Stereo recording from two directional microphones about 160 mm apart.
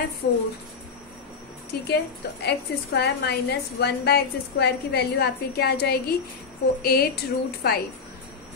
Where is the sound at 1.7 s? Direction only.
80° left.